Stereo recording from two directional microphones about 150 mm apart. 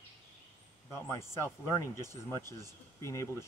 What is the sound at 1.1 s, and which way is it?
Speech, 20° left (ahead or behind).